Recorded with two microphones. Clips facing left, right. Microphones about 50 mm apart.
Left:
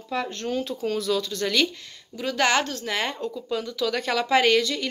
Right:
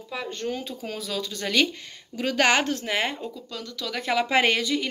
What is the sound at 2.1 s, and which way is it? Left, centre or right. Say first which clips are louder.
A woman's voice: right 1 dB; right.